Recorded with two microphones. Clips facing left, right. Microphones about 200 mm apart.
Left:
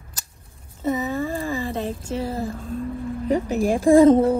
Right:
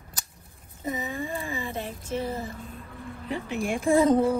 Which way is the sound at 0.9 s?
35° left (ahead or behind).